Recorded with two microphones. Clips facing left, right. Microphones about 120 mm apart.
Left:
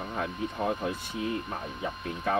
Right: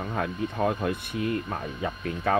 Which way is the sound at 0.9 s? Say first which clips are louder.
Right 4 dB; 60° right (ahead or behind).